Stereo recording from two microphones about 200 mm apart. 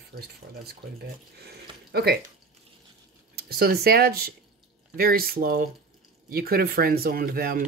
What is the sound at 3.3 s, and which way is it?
Speech, 50° right (ahead or behind).